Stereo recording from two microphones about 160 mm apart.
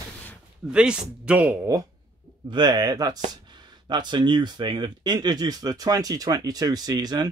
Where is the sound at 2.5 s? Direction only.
25° right (ahead or behind).